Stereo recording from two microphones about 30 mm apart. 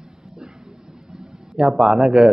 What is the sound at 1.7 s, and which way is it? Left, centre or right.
Speech, centre.